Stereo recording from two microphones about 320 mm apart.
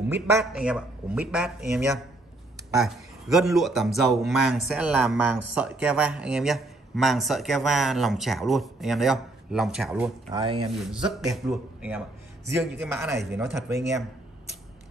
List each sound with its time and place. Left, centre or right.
0.1 s a man's voice: centre
10.3 s speech: centre
11.1 s a man's voice: centre